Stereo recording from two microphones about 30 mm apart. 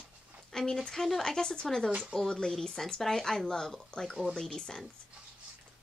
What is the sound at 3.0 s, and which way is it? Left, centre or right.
Speech, centre.